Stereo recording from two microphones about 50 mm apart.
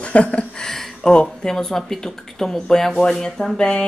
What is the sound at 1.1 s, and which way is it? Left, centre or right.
Speech, centre.